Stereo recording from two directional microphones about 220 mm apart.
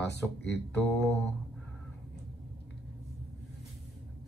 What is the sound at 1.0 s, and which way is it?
Mantra, centre (ahead or behind).